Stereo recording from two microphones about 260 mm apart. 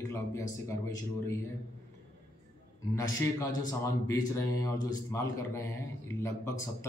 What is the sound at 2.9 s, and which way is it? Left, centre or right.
A man's voice, centre.